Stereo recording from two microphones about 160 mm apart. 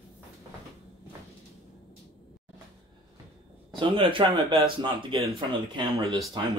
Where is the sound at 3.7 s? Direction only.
30° right (ahead or behind).